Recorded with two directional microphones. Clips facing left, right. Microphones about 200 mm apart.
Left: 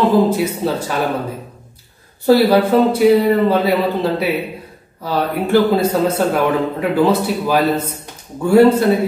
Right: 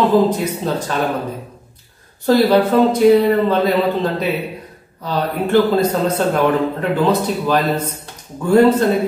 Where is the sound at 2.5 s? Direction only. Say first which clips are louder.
Even; 10° left (ahead or behind).